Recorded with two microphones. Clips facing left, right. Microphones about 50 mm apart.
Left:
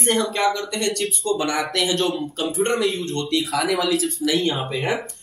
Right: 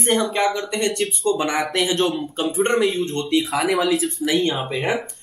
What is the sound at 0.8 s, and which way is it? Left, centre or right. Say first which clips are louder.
Speech: right 4 dB; centre.